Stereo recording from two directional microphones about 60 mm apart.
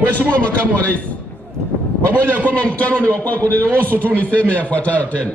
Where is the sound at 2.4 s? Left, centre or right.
Left.